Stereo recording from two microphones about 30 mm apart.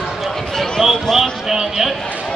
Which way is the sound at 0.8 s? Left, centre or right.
Centre.